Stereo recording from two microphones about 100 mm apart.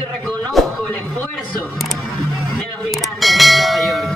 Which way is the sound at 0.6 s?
Centre (ahead or behind).